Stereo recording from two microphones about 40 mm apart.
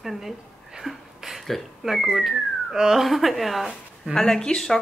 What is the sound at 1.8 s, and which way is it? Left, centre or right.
Speech, centre.